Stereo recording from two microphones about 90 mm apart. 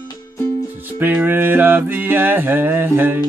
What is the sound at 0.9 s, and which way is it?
Music, 20° right (ahead or behind).